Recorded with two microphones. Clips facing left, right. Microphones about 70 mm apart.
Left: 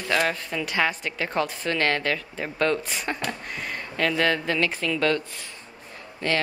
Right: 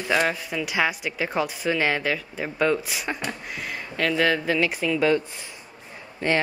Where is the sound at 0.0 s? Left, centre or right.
Centre.